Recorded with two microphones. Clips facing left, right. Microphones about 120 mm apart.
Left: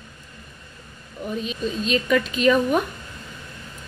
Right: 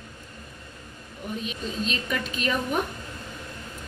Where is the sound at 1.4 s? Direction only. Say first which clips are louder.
Left 5 dB; 90° left.